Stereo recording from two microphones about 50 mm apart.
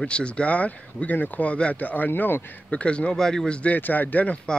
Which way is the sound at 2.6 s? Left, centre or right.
Left.